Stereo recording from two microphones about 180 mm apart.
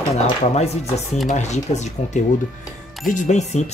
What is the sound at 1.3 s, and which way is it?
Speech, 40° left (ahead or behind).